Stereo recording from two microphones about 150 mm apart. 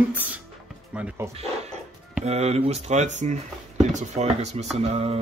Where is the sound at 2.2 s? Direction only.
45° right (ahead or behind).